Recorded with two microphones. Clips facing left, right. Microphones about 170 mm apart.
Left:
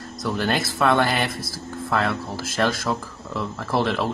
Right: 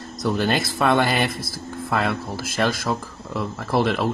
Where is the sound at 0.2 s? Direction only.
15° right (ahead or behind).